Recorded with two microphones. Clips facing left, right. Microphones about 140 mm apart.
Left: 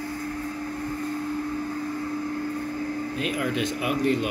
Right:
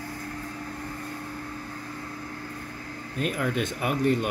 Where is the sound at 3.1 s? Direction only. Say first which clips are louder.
Right 2 dB; 45° right (ahead or behind).